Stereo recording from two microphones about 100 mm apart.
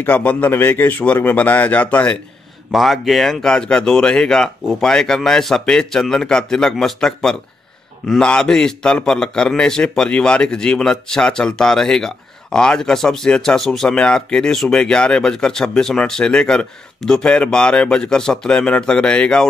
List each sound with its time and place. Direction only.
0.0 s a man's voice: 15° left (ahead or behind)
2.7 s a man's voice: centre (ahead or behind)